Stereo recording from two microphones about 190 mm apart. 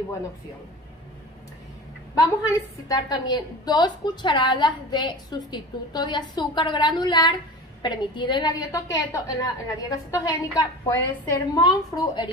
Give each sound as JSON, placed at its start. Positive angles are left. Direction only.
{"t": 2.9, "sound": "a woman's voice", "side_deg": 20}